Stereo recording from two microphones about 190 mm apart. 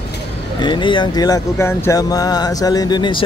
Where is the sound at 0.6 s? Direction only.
25° left (ahead or behind).